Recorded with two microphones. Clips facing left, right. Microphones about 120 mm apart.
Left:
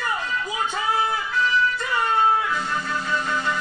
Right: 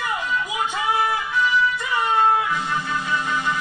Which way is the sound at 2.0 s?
15° right (ahead or behind).